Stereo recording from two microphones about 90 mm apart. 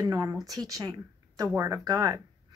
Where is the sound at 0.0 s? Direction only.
40° right (ahead or behind).